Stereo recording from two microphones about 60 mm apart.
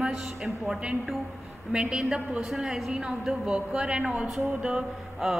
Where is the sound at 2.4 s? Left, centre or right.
Centre.